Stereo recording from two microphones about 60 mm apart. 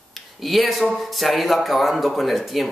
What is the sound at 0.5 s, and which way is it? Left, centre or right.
Speech, centre.